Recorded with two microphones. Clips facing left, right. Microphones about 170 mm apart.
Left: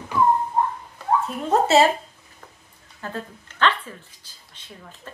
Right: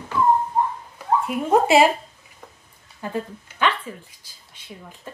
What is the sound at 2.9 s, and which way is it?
Speech, 15° right (ahead or behind).